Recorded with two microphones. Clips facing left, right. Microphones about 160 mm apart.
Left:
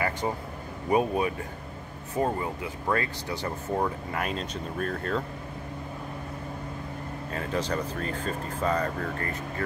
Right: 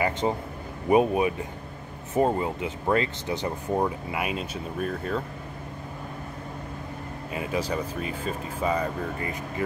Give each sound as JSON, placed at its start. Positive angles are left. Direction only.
{"t": 0.2, "sound": "speech", "side_deg": -20}
{"t": 7.3, "sound": "speech", "side_deg": -10}